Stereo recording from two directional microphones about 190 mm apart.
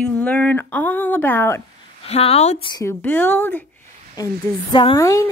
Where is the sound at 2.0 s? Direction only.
30° left (ahead or behind).